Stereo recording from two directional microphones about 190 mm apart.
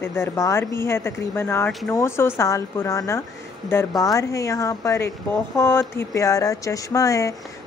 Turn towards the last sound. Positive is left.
turn(degrees=15)  # may be behind; listen again after turning